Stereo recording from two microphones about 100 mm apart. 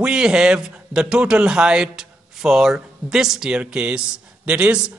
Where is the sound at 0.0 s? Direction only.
10° right (ahead or behind).